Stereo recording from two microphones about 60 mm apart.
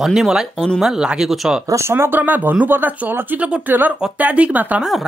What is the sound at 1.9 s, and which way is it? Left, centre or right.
Speech, right.